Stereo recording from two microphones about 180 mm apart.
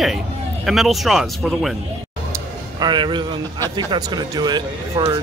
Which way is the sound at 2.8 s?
25° right (ahead or behind).